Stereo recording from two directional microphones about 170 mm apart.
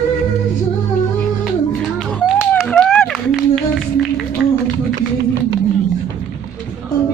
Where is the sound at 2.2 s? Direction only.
Centre (ahead or behind).